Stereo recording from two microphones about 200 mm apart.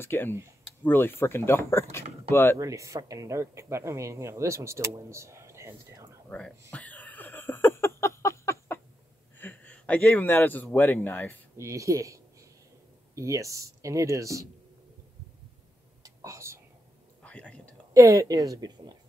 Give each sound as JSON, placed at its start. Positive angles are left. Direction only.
{"t": 0.0, "sound": "speech", "side_deg": 10}
{"t": 2.6, "sound": "speech", "side_deg": -15}
{"t": 6.2, "sound": "speech", "side_deg": 5}
{"t": 6.7, "sound": "a sound", "side_deg": 5}
{"t": 9.4, "sound": "speech", "side_deg": 10}
{"t": 11.5, "sound": "speech", "side_deg": -15}
{"t": 16.0, "sound": "whispering", "side_deg": -15}
{"t": 17.2, "sound": "a sound", "side_deg": 5}
{"t": 17.9, "sound": "speech", "side_deg": -15}